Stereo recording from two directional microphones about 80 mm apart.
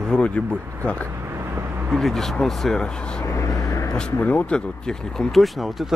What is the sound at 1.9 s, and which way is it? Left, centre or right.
Speech, centre.